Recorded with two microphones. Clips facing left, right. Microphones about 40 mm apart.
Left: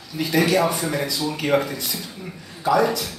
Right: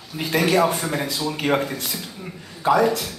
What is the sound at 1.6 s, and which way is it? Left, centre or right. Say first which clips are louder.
Speech: even; centre.